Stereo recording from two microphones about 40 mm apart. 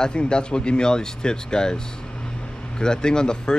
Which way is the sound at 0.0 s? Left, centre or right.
Left.